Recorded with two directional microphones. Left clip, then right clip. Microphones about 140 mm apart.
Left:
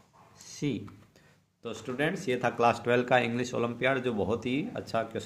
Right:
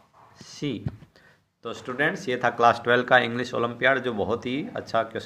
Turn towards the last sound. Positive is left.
turn(degrees=30)  # may be behind; listen again after turning